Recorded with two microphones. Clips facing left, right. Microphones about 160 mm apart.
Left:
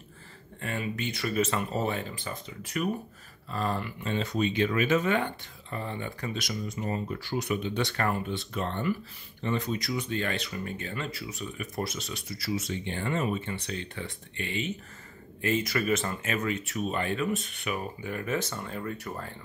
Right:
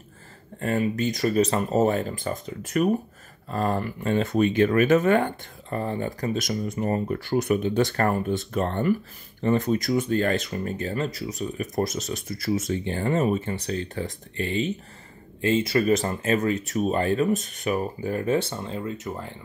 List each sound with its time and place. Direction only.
0.6 s speech: 40° right (ahead or behind); by 19.3 s 20° right (ahead or behind)